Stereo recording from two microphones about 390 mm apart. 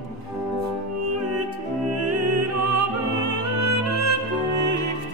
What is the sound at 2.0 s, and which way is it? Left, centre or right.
Music, right.